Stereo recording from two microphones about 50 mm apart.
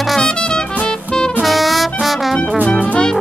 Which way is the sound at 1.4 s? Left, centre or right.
Centre.